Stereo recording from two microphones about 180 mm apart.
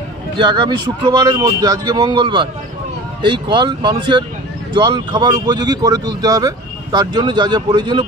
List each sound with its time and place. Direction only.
0.4 s speech: 25° right (ahead or behind)